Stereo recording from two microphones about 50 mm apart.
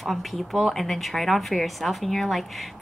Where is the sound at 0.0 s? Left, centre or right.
Centre.